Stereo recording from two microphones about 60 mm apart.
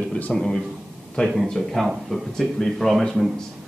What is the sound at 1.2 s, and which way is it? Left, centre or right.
Speech, left.